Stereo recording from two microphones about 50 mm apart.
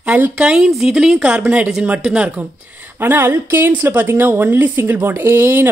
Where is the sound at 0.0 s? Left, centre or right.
Right.